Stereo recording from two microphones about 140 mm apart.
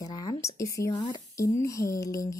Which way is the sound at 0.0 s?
25° left (ahead or behind).